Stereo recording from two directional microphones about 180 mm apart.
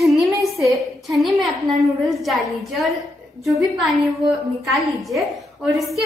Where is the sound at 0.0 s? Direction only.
Centre (ahead or behind).